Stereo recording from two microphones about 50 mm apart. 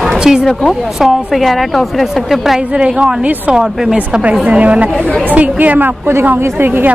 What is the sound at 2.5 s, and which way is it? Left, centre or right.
Speech, right.